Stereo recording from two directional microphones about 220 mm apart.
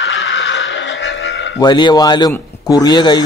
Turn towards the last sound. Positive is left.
turn(degrees=20)  # may be behind; listen again after turning